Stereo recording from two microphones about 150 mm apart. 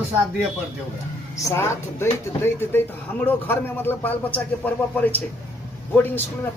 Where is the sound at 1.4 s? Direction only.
20° left (ahead or behind).